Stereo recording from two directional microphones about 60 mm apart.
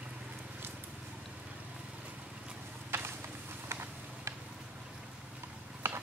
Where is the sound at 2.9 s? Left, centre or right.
Right.